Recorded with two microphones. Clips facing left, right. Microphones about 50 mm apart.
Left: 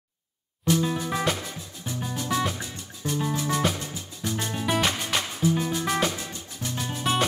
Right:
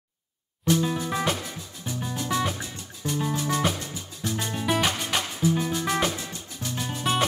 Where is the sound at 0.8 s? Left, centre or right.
Centre.